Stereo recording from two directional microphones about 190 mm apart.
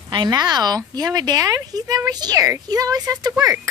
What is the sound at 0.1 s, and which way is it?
A woman's voice, 20° right (ahead or behind).